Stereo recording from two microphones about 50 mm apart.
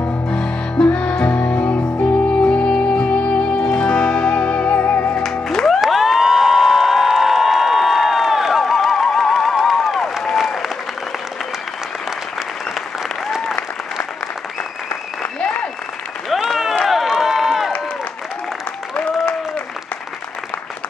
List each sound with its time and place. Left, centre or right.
0.3 s music: centre; by 5.1 s left
5.7 s cheering: centre
10.3 s applause: centre
16.3 s applause: centre
16.8 s crowd: centre